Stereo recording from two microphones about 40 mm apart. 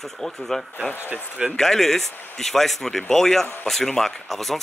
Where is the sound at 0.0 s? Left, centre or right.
Centre.